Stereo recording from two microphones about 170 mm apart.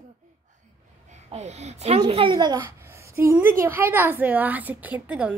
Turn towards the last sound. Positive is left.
turn(degrees=-10)  # may be behind; listen again after turning